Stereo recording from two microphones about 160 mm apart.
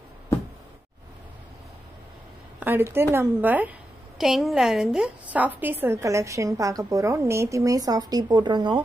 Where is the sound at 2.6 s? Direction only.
10° right (ahead or behind).